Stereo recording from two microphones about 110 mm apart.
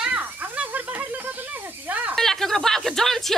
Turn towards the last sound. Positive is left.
turn(degrees=5)  # may be behind; listen again after turning